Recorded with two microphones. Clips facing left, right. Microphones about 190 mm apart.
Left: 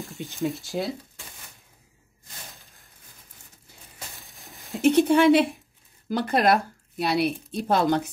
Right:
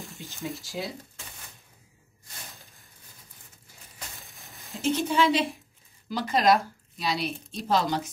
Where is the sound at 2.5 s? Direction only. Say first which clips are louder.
Right 1 dB; centre (ahead or behind).